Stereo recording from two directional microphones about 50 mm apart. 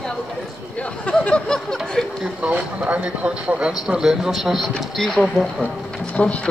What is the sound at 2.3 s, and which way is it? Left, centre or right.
Speech, right.